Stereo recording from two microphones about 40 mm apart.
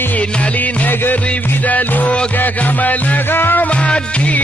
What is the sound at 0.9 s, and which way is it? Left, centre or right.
Music, left.